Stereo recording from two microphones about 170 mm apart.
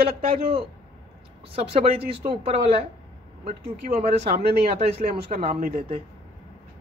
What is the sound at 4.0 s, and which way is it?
Speech, 40° right (ahead or behind).